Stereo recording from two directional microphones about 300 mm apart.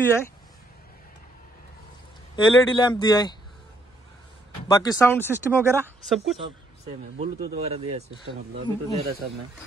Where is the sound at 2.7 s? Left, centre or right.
Centre.